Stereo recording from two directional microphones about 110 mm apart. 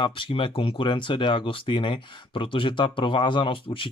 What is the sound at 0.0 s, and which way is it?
Speech, 50° left (ahead or behind).